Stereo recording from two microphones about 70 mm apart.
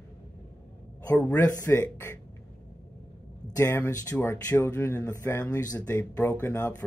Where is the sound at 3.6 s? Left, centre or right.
Left.